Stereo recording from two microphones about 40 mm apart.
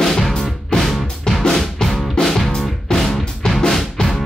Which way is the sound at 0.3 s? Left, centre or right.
Centre.